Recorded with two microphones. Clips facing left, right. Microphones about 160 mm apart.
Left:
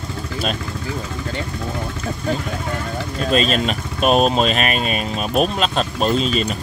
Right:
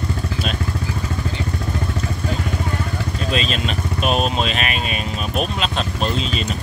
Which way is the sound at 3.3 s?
45° left (ahead or behind).